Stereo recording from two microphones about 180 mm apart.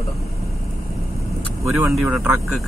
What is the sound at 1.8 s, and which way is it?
Speech, centre (ahead or behind).